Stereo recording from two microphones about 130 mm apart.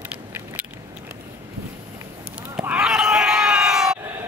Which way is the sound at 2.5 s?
10° right (ahead or behind).